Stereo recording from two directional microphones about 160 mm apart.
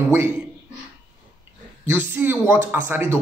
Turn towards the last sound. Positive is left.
turn(degrees=-10)  # may be behind; listen again after turning